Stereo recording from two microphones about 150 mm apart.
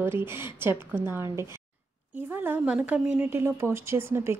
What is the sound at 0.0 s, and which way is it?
Speech, 15° right (ahead or behind).